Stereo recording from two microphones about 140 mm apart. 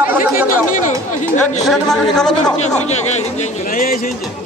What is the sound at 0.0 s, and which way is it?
Chatter, 15° right (ahead or behind).